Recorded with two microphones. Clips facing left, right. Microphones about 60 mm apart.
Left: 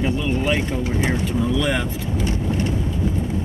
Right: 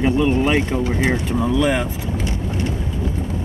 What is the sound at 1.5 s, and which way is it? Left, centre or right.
Speech, centre.